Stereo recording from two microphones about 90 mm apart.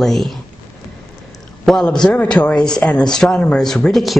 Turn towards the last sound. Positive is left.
turn(degrees=0)  # may be behind; listen again after turning